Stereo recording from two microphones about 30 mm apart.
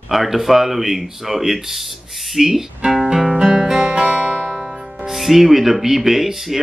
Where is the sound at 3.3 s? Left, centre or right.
Right.